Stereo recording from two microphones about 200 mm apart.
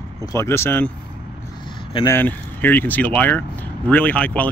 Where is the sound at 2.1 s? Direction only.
10° left (ahead or behind).